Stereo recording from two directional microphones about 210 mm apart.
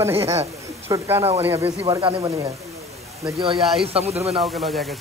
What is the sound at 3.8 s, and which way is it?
Speech, 30° right (ahead or behind).